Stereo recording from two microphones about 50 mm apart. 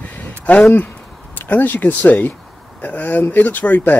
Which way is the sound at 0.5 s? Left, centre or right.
Left.